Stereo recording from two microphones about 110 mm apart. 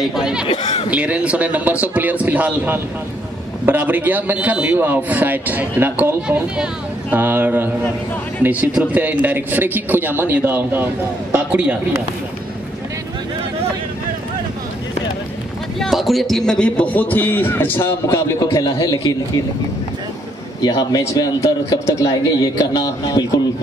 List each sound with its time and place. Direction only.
0.1 s a man's voice: 5° right (ahead or behind)
6.2 s a man's voice: 10° right (ahead or behind)
15.8 s a man's voice: centre (ahead or behind); by 19.1 s 35° left (ahead or behind)
20.6 s speech: 35° left (ahead or behind)